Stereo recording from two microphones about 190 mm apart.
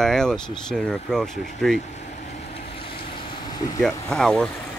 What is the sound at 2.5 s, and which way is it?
Vehicle, 30° left (ahead or behind).